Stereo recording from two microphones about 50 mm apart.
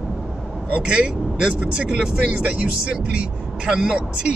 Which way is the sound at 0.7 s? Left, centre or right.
Right.